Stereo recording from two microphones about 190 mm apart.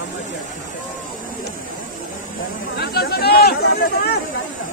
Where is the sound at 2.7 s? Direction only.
55° left (ahead or behind).